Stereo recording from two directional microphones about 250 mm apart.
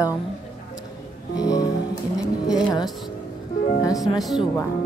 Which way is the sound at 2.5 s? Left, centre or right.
Centre.